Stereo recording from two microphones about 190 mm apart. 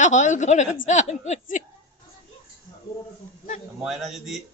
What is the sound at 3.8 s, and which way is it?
Speech, centre (ahead or behind).